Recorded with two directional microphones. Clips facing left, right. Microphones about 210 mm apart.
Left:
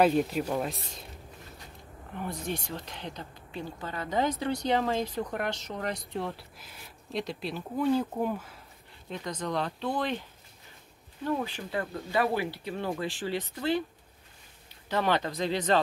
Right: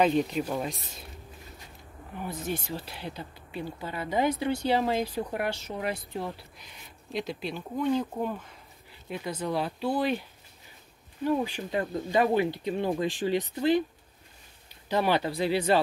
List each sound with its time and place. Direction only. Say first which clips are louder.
0.0 s speech: even; 5° left (ahead or behind)
2.1 s speech: right 1 dB; 5° right (ahead or behind)
9.1 s speech: right 2 dB; 10° right (ahead or behind)
11.2 s speech: right 4 dB; 15° right (ahead or behind)
14.9 s speech: right 2 dB; 15° right (ahead or behind)